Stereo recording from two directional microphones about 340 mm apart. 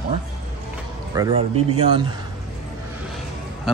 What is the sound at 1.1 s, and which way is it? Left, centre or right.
Speech, centre.